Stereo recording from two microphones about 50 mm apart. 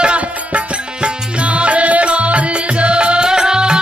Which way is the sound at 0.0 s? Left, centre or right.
Right.